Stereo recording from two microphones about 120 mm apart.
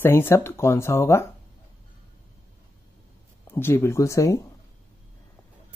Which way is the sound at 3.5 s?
20° left (ahead or behind).